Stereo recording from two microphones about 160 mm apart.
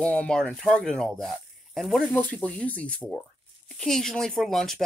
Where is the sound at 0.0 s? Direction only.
5° left (ahead or behind).